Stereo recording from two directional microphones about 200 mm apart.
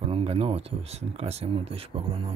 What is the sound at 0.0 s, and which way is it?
Speech, 30° right (ahead or behind).